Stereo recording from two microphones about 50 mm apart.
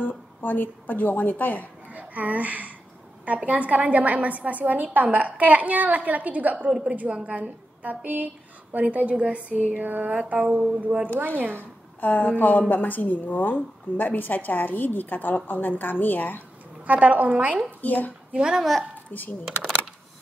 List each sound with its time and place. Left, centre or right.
0.0 s a woman's voice: left
1.9 s a woman's voice: right
6.8 s a sound: right
11.1 s a woman's voice: right
12.0 s a woman's voice: left
16.8 s a sound: right
17.6 s a woman's voice: left
18.3 s a child's voice: centre
19.1 s a woman's voice: left